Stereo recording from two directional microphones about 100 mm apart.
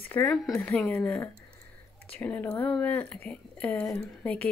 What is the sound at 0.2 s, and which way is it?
Speech, 25° left (ahead or behind).